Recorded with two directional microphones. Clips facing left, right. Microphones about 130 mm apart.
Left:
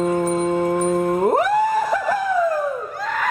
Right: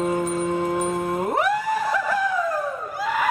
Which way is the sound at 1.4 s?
40° left (ahead or behind).